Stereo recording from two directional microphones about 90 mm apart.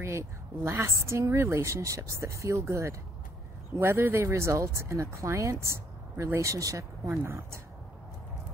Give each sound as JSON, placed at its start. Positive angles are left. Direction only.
{"t": 0.0, "sound": "speech", "side_deg": -30}
{"t": 7.1, "sound": "speech", "side_deg": -30}